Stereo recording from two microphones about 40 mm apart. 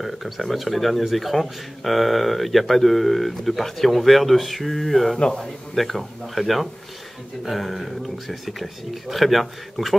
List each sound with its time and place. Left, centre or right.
0.0 s speech: centre
5.2 s a man's voice: left
5.8 s speech: centre